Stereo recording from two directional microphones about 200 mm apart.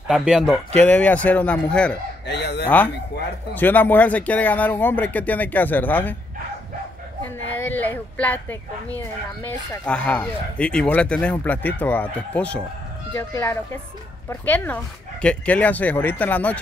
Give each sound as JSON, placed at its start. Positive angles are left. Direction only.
{"t": 0.1, "sound": "speech", "side_deg": 0}
{"t": 2.2, "sound": "fowl", "side_deg": 55}
{"t": 3.5, "sound": "speech", "side_deg": 10}
{"t": 7.4, "sound": "a sound", "side_deg": 10}
{"t": 9.4, "sound": "speech", "side_deg": 5}